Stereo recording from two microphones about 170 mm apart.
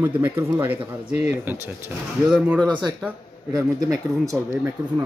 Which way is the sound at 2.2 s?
5° right (ahead or behind).